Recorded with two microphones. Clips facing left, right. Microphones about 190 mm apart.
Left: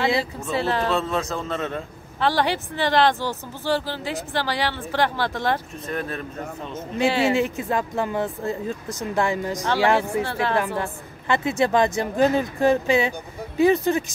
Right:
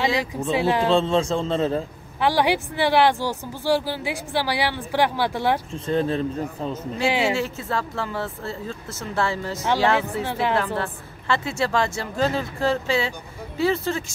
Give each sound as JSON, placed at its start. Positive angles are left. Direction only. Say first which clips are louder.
{"t": 0.5, "sound": "speech", "louder": "right 3 dB", "side_deg": -10}
{"t": 0.9, "sound": "a man's voice", "louder": "right 5 dB", "side_deg": -30}
{"t": 2.1, "sound": "speech", "louder": "right 2 dB", "side_deg": -10}
{"t": 5.9, "sound": "a man's voice", "louder": "right 7 dB", "side_deg": -30}
{"t": 7.1, "sound": "speech", "louder": "left 1 dB", "side_deg": -15}
{"t": 7.3, "sound": "a woman's voice", "louder": "left 3 dB", "side_deg": 15}